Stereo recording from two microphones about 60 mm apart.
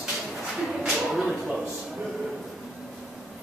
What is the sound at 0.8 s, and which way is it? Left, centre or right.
Speech, centre.